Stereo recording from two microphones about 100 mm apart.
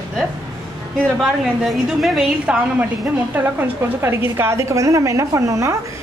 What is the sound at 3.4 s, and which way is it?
A woman's voice, 25° right (ahead or behind).